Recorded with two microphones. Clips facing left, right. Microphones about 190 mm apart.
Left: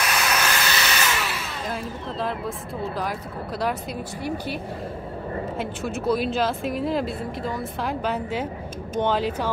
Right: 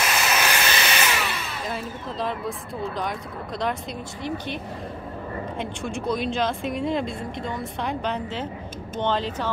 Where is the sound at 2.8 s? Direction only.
5° left (ahead or behind).